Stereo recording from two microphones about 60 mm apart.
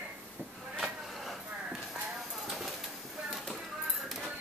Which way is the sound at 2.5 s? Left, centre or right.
Centre.